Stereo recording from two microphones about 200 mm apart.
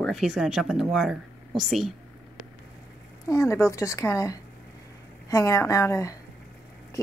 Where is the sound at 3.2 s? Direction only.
15° left (ahead or behind).